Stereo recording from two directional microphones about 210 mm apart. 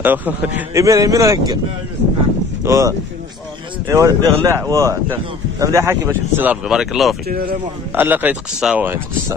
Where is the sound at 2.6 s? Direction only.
15° right (ahead or behind).